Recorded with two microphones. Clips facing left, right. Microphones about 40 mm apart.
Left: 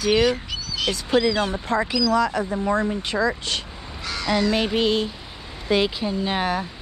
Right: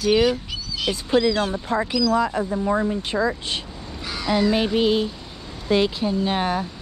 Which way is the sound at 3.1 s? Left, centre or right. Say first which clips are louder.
Even; left.